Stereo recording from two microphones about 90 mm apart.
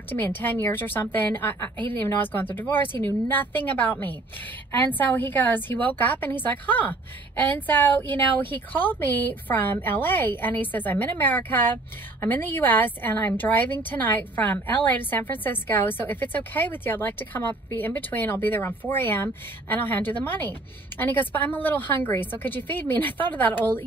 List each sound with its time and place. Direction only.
0.1 s a woman's voice: 20° left (ahead or behind)